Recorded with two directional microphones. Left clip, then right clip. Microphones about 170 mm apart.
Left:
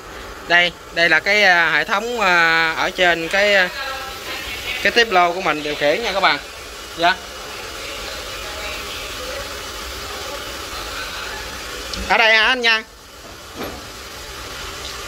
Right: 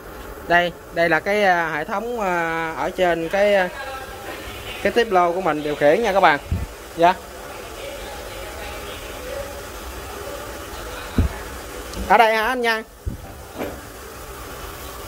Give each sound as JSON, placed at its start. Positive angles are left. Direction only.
{"t": 0.5, "sound": "speech", "side_deg": -25}
{"t": 4.8, "sound": "speech", "side_deg": -20}
{"t": 5.9, "sound": "speech", "side_deg": -35}
{"t": 12.1, "sound": "speech", "side_deg": -20}